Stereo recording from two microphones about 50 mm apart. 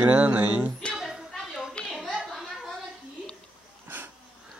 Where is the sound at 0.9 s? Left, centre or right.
Centre.